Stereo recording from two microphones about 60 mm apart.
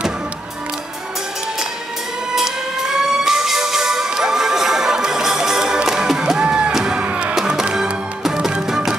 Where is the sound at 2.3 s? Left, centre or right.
Centre.